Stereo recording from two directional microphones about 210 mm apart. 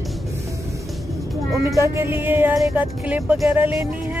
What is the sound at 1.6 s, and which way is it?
Speech, 15° right (ahead or behind).